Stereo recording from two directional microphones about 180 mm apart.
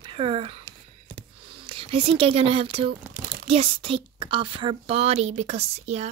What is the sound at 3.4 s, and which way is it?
A woman's voice, 30° right (ahead or behind).